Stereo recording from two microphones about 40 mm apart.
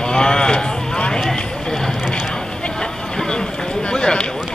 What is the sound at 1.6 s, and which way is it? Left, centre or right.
Vehicle, centre.